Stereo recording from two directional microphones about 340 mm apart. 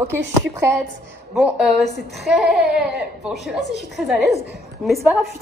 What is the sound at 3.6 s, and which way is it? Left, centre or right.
Speech, left.